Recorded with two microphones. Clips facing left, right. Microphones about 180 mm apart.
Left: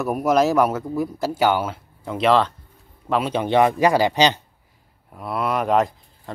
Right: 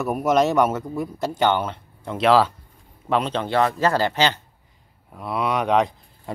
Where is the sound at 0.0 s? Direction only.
Centre (ahead or behind); by 4.4 s 15° left (ahead or behind).